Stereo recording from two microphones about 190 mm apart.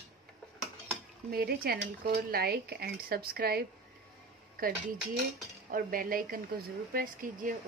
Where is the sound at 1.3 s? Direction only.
55° right (ahead or behind).